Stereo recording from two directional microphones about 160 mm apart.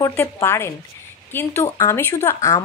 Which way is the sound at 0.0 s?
15° left (ahead or behind).